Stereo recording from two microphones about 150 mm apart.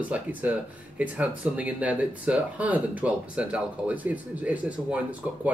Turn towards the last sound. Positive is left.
turn(degrees=-10)  # may be behind; listen again after turning